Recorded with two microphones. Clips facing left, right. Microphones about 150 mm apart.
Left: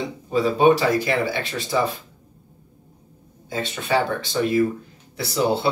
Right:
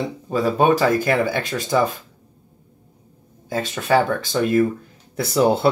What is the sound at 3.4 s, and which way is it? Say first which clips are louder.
Speech: right 4 dB; 45° right (ahead or behind).